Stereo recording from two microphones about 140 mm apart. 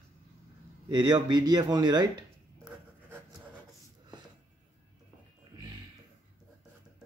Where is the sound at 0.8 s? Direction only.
30° right (ahead or behind).